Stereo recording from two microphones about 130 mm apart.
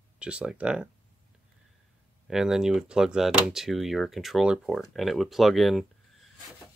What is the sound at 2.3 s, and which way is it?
Speech, 5° right (ahead or behind).